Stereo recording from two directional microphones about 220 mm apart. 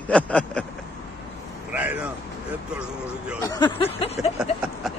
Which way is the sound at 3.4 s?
20° left (ahead or behind).